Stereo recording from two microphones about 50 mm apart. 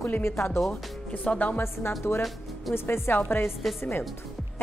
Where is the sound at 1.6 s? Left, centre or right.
Left.